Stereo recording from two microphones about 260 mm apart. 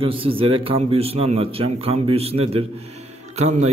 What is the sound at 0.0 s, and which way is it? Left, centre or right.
A man's voice, right.